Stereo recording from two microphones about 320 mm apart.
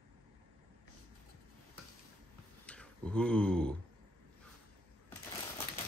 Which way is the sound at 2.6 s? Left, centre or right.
Centre.